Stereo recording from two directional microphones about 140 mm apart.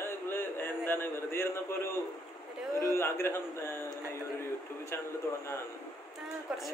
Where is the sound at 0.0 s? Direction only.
15° left (ahead or behind).